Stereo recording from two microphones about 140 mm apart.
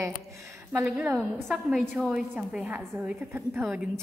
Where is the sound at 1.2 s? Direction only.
Centre (ahead or behind).